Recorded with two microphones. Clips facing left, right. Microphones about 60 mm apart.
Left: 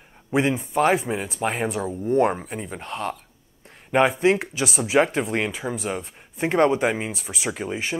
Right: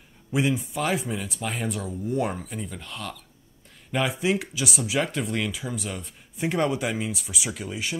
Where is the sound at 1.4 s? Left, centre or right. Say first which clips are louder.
Left 8 dB; left.